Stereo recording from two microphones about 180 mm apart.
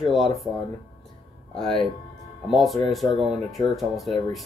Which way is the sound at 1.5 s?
Centre (ahead or behind).